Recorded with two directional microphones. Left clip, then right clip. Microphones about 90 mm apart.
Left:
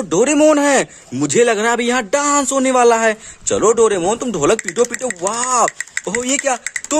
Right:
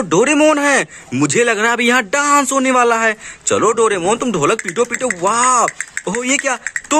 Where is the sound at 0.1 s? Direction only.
40° left (ahead or behind).